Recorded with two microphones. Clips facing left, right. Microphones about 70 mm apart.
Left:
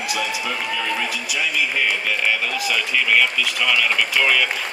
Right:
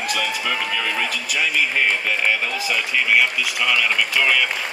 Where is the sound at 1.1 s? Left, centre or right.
Right.